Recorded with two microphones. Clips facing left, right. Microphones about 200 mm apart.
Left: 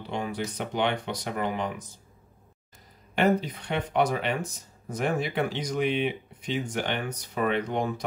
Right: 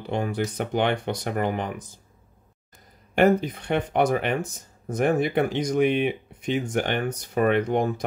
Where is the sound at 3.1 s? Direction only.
55° right (ahead or behind).